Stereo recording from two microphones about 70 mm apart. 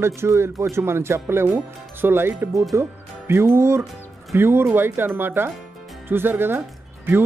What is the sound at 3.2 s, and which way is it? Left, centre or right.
Speech, right.